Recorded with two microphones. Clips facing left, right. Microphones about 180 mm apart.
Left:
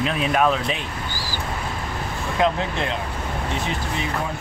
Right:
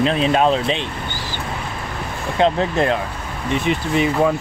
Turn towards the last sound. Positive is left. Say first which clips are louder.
# right 9 dB
turn(degrees=-70)  # may be behind; listen again after turning